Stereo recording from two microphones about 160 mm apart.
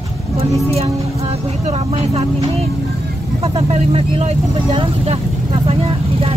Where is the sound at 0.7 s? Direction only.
40° right (ahead or behind).